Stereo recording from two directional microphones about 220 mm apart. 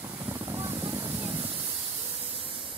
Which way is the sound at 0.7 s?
20° right (ahead or behind).